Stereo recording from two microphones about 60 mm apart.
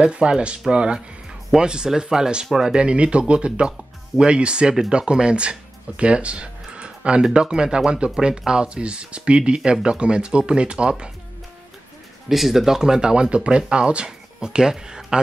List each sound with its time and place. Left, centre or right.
0.0 s speech: centre
12.3 s speech: centre